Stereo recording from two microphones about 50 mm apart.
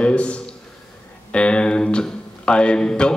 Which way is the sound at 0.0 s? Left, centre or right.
Left.